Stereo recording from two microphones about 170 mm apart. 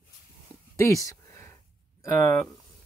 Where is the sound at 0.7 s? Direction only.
20° left (ahead or behind).